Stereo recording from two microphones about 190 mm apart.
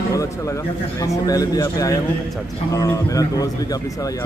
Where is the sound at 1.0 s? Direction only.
20° left (ahead or behind).